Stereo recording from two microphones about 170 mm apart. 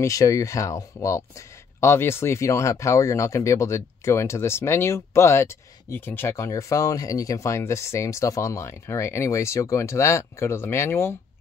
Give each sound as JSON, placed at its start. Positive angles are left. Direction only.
{"t": 0.0, "sound": "speech", "side_deg": 20}